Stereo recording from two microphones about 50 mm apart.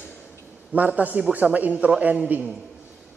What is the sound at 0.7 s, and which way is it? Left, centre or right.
A man's voice, right.